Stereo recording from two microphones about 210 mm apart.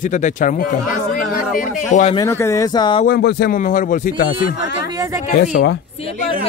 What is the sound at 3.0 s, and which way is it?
Speech, 45° left (ahead or behind).